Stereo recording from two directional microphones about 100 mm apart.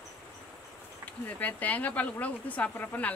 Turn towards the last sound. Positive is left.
turn(degrees=15)  # may be behind; listen again after turning